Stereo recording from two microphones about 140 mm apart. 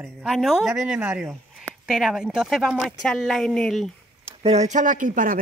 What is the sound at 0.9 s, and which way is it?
Speech, 10° right (ahead or behind).